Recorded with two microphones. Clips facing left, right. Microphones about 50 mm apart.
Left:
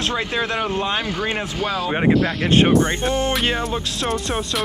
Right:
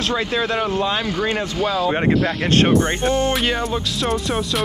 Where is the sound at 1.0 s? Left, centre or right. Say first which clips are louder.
Right 2 dB; centre.